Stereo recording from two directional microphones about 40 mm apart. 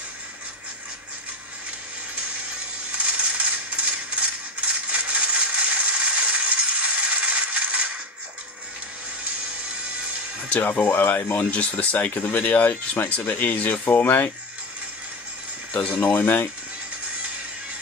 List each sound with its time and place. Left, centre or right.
2.9 s a sound: right
10.5 s speech: left
10.9 s speech: left
12.2 s speech: left
12.4 s speech: left
16.1 s speech: left